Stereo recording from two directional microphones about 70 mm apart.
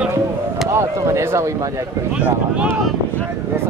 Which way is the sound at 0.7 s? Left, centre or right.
Right.